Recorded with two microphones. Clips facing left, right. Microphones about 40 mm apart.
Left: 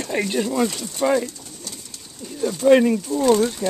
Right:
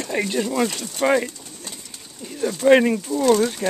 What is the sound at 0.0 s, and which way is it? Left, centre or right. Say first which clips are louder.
Speech: left 1 dB; centre.